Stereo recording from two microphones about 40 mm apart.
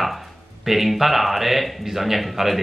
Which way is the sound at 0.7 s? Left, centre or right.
Centre.